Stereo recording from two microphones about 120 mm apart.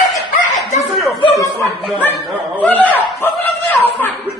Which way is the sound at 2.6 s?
15° left (ahead or behind).